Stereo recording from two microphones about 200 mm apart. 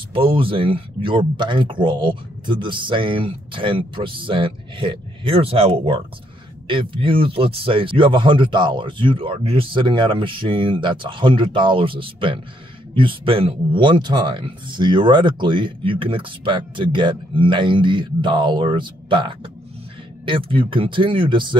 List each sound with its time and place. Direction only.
0.1 s speech: 25° right (ahead or behind)